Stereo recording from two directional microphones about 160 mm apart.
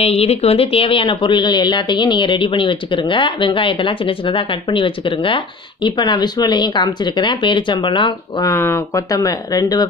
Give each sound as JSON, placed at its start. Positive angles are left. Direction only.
{"t": 0.0, "sound": "speech", "side_deg": 40}
{"t": 8.5, "sound": "speech", "side_deg": 15}